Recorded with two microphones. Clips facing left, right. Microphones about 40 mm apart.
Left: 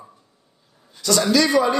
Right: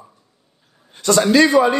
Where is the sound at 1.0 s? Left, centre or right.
Right.